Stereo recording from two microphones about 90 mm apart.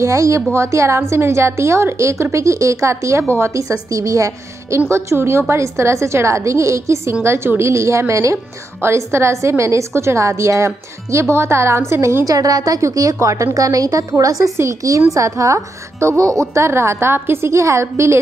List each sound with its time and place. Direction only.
0.0 s a woman's voice: 35° right (ahead or behind)
12.4 s a woman's voice: 45° right (ahead or behind)